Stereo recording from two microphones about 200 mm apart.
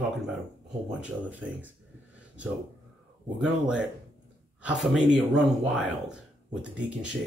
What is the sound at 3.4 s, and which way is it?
Speech, 5° right (ahead or behind).